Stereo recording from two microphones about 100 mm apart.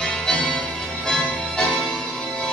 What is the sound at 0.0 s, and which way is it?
Music, 5° left (ahead or behind).